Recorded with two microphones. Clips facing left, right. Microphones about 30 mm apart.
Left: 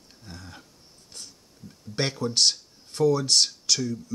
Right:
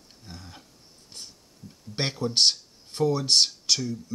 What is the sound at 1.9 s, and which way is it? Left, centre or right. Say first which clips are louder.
Speech: left 1 dB; right.